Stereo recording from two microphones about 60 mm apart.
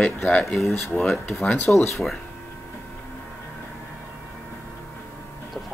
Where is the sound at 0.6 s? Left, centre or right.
Left.